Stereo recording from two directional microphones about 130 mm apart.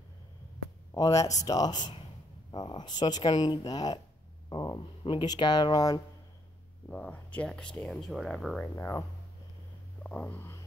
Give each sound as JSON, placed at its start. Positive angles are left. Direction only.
{"t": 0.9, "sound": "speech", "side_deg": 30}
{"t": 6.9, "sound": "speech", "side_deg": 10}
{"t": 8.6, "sound": "speech", "side_deg": 20}
{"t": 10.0, "sound": "a sound", "side_deg": 10}